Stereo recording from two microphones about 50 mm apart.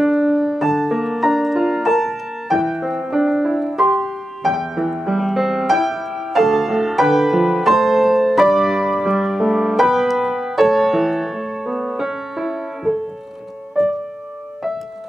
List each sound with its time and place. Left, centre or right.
0.0 s music: centre